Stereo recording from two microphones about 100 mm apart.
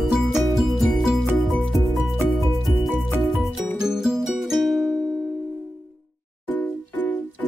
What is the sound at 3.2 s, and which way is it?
Music, centre (ahead or behind).